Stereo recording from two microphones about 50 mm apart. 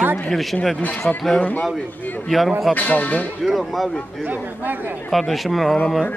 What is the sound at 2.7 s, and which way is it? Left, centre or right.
Speech, left.